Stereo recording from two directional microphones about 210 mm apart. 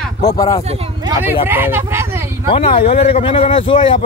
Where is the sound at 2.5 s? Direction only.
25° left (ahead or behind).